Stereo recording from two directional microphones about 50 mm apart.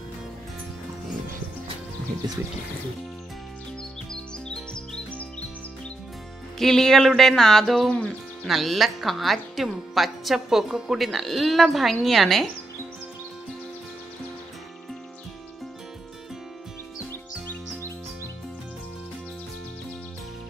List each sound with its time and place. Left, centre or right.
6.6 s music: centre
7.1 s speech: centre
11.1 s speech: centre
17.1 s music: left